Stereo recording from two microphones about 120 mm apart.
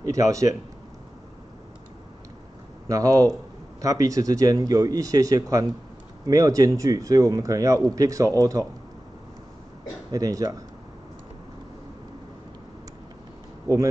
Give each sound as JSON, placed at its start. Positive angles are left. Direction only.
{"t": 0.1, "sound": "speech", "side_deg": -25}
{"t": 2.9, "sound": "speech", "side_deg": -30}
{"t": 10.1, "sound": "speech", "side_deg": -30}